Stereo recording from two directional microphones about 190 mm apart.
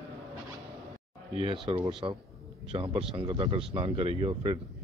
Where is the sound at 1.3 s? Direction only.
30° right (ahead or behind).